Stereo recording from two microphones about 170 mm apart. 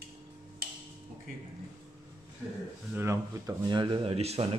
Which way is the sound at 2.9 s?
15° right (ahead or behind).